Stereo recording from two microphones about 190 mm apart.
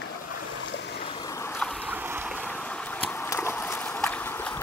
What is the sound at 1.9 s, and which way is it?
Boat, 10° right (ahead or behind).